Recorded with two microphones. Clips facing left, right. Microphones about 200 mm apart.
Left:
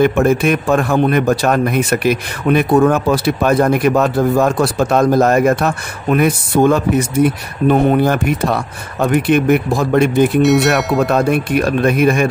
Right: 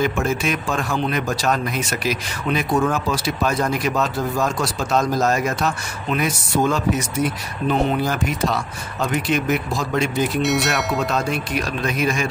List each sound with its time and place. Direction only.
0.0 s a man's voice: 60° left (ahead or behind)
10.4 s speech: centre (ahead or behind)
11.0 s a man's voice: 55° left (ahead or behind)